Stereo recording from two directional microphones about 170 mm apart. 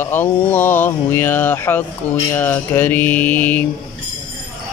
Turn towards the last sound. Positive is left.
turn(degrees=10)  # may be behind; listen again after turning